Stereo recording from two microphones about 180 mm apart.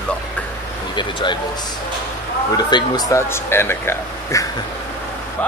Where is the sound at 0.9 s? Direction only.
25° left (ahead or behind).